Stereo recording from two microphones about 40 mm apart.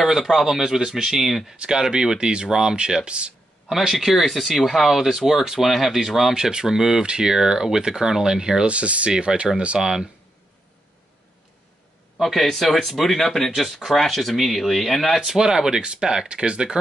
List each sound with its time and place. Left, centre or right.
0.2 s speech: centre
0.5 s speech: centre
3.1 s a sound: right
3.7 s speech: centre
8.6 s speech: right; by 10.0 s centre
12.2 s speech: centre
15.2 s speech: centre